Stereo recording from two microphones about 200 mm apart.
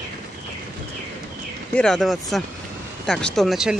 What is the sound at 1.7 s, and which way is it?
Speech, 5° left (ahead or behind).